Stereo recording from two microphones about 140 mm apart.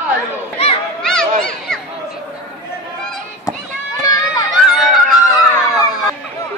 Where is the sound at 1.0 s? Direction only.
5° left (ahead or behind).